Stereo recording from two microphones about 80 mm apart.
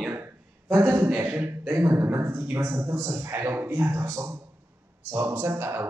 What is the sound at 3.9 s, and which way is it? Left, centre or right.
A man's voice, right.